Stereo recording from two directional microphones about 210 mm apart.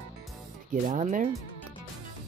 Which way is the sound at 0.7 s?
35° right (ahead or behind).